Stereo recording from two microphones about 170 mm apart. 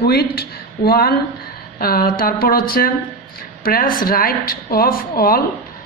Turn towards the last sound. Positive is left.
turn(degrees=60)  # may be behind; listen again after turning